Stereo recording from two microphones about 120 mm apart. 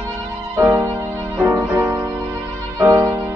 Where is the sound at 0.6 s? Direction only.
20° right (ahead or behind).